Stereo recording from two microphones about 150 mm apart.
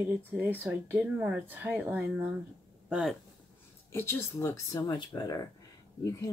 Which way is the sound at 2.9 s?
Centre (ahead or behind).